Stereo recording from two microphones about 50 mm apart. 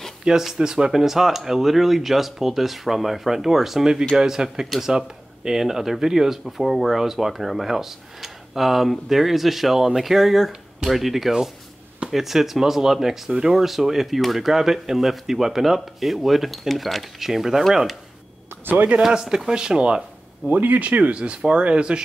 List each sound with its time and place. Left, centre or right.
0.4 s speech: centre
18.9 s speech: centre
20.4 s speech: right; by 22.0 s centre